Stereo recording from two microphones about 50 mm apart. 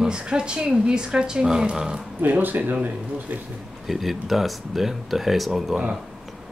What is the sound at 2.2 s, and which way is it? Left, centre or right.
Speech, right.